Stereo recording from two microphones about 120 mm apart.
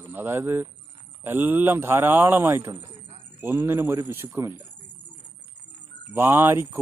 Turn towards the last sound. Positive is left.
turn(degrees=-20)  # may be behind; listen again after turning